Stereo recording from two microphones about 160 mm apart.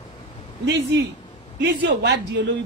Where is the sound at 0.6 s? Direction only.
90° right.